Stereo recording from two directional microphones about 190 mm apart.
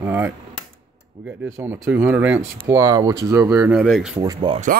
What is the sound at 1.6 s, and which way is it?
Speech, 10° right (ahead or behind).